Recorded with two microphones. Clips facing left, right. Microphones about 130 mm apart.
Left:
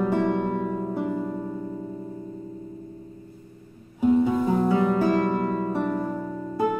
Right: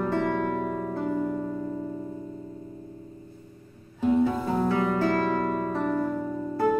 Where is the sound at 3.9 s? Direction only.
15° left (ahead or behind).